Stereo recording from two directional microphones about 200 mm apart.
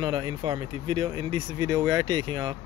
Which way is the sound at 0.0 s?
25° right (ahead or behind).